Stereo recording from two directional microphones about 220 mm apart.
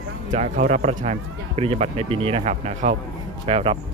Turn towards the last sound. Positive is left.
turn(degrees=-25)  # may be behind; listen again after turning